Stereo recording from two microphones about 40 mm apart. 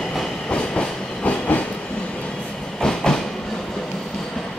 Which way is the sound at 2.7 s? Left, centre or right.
Centre.